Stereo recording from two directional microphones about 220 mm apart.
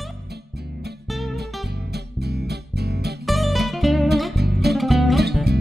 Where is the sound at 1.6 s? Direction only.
50° right (ahead or behind).